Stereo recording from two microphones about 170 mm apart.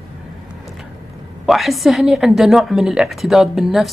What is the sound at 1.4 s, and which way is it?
A woman's voice, centre (ahead or behind).